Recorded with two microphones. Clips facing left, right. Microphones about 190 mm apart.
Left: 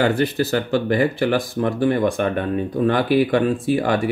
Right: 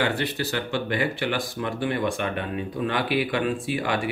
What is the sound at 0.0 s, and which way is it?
Speech, 45° left (ahead or behind).